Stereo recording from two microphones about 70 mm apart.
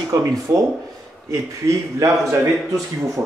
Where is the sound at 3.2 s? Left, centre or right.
Right.